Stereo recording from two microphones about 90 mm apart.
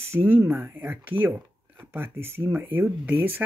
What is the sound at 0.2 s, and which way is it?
Speech, 20° right (ahead or behind).